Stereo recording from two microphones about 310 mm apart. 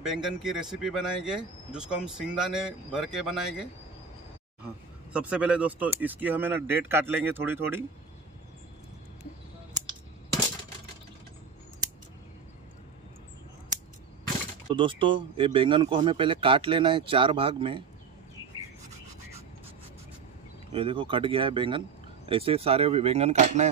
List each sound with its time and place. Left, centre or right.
0.0 s speech: centre
4.6 s speech: centre
14.7 s speech: centre
20.7 s speech: centre